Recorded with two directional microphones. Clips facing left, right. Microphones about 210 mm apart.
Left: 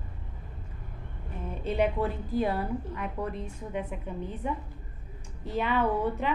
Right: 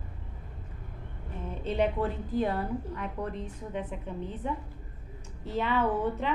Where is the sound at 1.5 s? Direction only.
10° left (ahead or behind).